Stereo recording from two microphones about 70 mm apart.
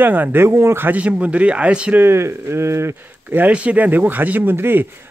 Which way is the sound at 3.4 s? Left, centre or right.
Centre.